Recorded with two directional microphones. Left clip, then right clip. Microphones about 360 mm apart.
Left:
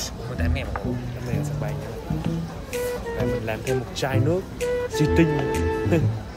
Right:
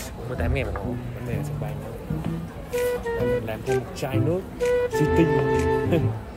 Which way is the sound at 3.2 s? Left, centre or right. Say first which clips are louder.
Right 1 dB; centre.